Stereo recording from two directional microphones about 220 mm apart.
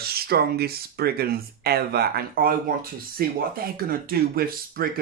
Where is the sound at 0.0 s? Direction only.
45° right (ahead or behind).